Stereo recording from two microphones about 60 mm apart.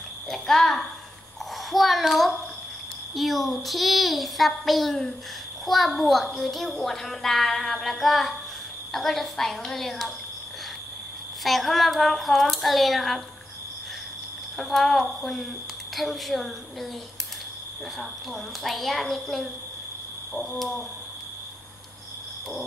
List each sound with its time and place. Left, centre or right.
0.3 s a sound: centre
1.7 s a child's voice: centre
11.4 s a child's voice: centre
14.6 s a child's voice: centre
17.9 s a child's voice: centre